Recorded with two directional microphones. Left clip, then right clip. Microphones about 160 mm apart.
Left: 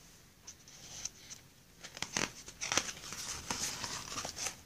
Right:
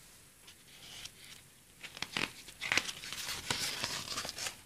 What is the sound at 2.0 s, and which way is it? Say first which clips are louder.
Crumpling: even; 25° right (ahead or behind).